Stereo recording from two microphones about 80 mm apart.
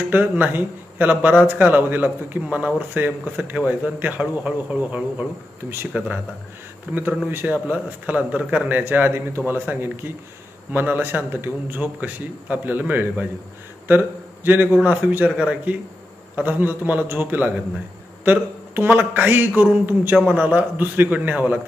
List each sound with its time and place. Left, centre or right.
0.1 s a man's voice: right